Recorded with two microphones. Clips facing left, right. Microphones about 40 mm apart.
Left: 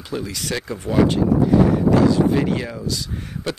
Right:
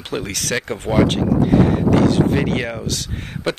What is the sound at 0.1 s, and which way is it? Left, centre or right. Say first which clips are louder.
Speech: right 3 dB; right.